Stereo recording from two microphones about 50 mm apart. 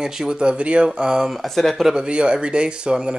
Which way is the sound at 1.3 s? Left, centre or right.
Centre.